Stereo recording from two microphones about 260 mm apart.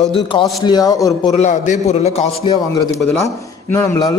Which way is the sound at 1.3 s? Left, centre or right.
Left.